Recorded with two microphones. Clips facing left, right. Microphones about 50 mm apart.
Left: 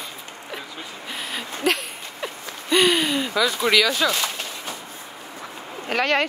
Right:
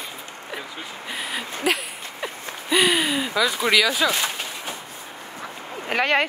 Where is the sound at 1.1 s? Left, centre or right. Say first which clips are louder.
Right 1 dB; centre.